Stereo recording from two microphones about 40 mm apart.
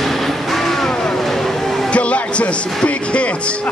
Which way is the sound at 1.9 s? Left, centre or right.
Left.